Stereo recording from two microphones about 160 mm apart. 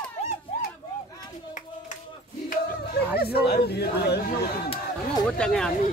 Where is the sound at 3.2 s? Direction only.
85° left.